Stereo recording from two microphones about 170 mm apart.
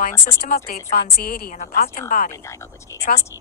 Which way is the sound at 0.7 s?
60° left (ahead or behind).